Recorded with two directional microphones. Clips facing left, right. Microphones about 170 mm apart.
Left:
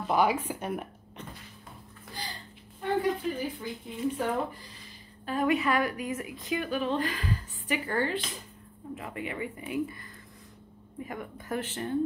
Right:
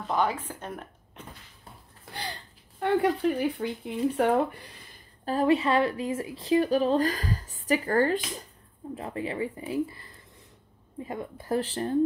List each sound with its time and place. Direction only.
0.0 s speech: 10° left (ahead or behind)
2.1 s a sound: 65° right (ahead or behind)
2.8 s speech: 65° right (ahead or behind)
5.2 s a woman's voice: 35° right (ahead or behind)